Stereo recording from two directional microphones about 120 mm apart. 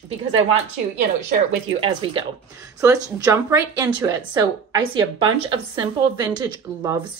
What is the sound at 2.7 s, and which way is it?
A woman's voice, 30° right (ahead or behind).